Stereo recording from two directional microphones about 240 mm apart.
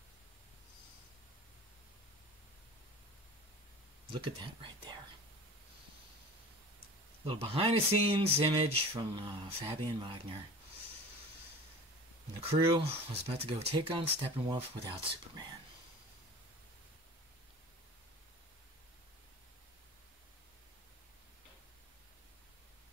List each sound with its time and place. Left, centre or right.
4.1 s speech: right
7.2 s speech: right
12.4 s speech: right